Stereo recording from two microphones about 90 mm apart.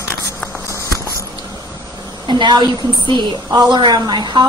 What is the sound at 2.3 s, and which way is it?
A woman's voice, 60° right (ahead or behind).